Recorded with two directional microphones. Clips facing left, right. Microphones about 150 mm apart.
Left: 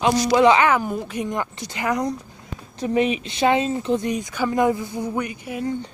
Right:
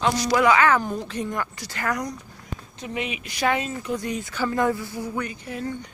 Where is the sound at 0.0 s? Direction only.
25° left (ahead or behind).